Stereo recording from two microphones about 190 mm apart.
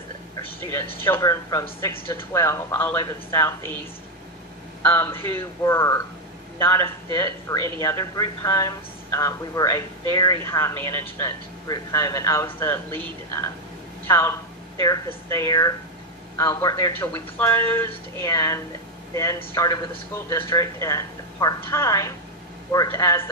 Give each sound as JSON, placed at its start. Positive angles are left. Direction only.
{"t": 0.9, "sound": "speech", "side_deg": 10}
{"t": 4.8, "sound": "speech", "side_deg": 10}
{"t": 14.0, "sound": "a man's voice", "side_deg": 15}